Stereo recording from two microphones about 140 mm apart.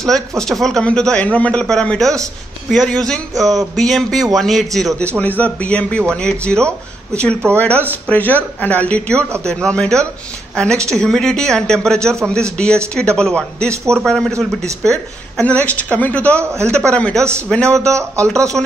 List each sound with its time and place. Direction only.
0.4 s a man's voice: 5° left (ahead or behind)
17.8 s a man's voice: 20° right (ahead or behind)